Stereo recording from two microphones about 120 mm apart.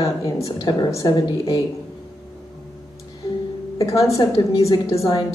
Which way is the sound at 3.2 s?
25° left (ahead or behind).